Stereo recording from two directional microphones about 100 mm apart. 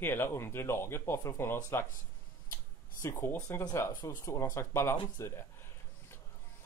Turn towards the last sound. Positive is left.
turn(degrees=30)  # may be behind; listen again after turning